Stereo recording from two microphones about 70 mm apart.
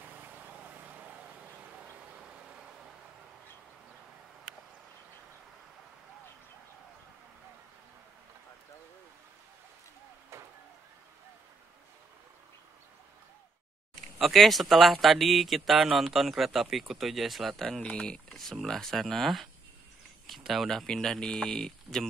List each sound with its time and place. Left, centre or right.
0.0 s vehicle: right; by 2.9 s centre
10.3 s vehicle: right
14.1 s speech: centre